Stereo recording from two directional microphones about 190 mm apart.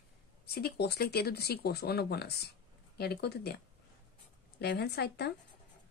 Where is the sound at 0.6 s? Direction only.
55° left (ahead or behind).